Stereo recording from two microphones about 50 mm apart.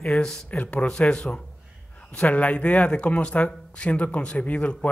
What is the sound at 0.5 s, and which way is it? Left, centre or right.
Speech, left.